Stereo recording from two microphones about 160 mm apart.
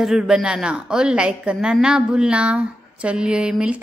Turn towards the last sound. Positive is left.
turn(degrees=-5)  # may be behind; listen again after turning